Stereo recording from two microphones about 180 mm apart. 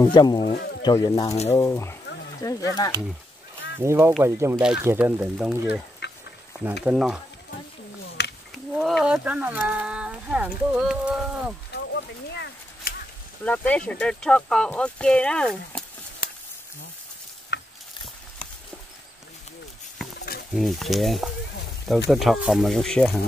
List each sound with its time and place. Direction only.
0.0 s speech: 25° left (ahead or behind)
0.5 s a sound: 60° left (ahead or behind)
0.8 s speech: 20° left (ahead or behind)
3.8 s speech: 15° right (ahead or behind)
6.8 s speech: 5° right (ahead or behind)
8.2 s a sound: 65° left (ahead or behind)
8.7 s speech: centre (ahead or behind)
11.7 s a sound: 70° left (ahead or behind)
13.4 s speech: 5° left (ahead or behind)
17.5 s stir: 70° left (ahead or behind)
20.2 s a sound: 60° left (ahead or behind)
20.5 s speech: centre (ahead or behind)